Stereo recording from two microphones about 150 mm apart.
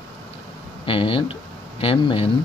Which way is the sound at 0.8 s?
35° left (ahead or behind).